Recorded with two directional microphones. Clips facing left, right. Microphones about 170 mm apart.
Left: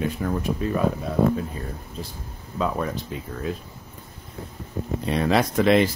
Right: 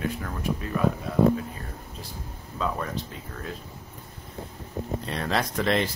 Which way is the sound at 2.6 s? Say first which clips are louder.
Left 4 dB; 20° left (ahead or behind).